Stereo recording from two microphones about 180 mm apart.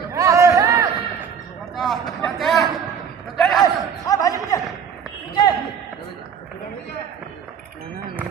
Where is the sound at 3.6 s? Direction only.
20° left (ahead or behind).